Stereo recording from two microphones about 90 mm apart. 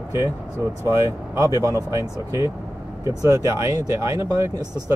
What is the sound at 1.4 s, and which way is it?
Speech, 40° right (ahead or behind).